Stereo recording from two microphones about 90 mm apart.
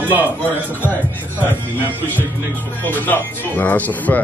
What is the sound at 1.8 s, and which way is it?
Speech, 20° right (ahead or behind).